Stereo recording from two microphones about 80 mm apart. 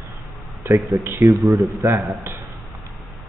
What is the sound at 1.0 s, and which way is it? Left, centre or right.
Speech, right.